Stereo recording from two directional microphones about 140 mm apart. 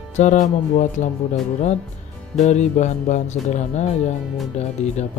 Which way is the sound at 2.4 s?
55° left (ahead or behind).